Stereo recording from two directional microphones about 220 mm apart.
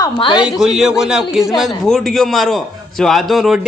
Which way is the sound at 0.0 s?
20° left (ahead or behind).